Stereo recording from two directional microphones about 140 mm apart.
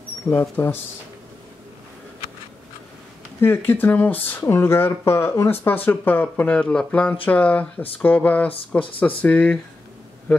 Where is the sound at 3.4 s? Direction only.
15° left (ahead or behind).